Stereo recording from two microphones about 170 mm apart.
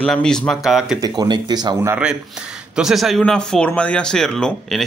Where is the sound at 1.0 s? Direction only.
25° right (ahead or behind).